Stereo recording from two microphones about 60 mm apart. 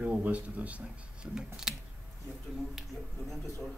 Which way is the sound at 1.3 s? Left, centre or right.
Centre.